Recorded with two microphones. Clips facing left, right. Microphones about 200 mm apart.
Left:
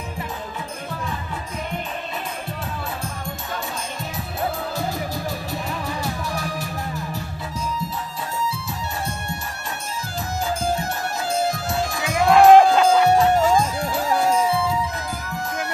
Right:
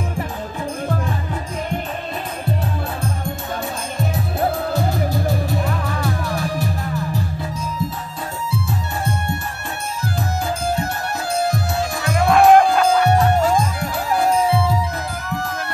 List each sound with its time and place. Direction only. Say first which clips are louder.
11.4 s music: right 2 dB; 60° right (ahead or behind)
12.3 s music: left 1 dB; 20° left (ahead or behind)